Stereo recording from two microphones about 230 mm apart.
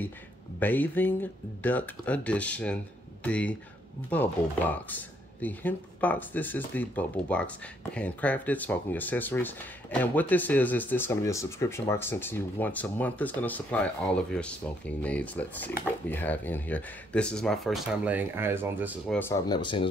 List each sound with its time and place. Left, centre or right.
0.6 s speech: centre
19.1 s speech: centre